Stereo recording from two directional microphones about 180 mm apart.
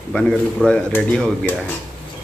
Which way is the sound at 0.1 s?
5° left (ahead or behind).